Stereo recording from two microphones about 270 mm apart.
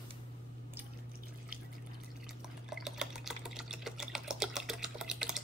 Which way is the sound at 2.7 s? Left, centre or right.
Centre.